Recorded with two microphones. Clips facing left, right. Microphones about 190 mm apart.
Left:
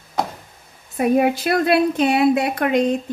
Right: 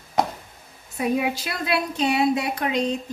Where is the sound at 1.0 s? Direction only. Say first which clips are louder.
Left 7 dB; 55° left (ahead or behind).